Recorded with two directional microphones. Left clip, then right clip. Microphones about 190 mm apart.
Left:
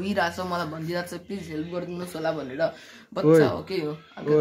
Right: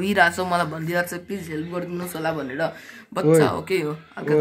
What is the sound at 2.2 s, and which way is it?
Speech, 5° left (ahead or behind).